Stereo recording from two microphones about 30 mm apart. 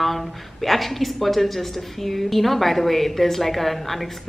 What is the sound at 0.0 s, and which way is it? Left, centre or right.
Speech, centre.